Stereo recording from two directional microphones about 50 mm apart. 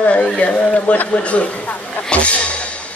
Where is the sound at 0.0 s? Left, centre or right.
Left.